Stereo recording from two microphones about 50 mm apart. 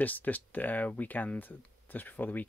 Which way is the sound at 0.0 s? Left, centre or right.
Left.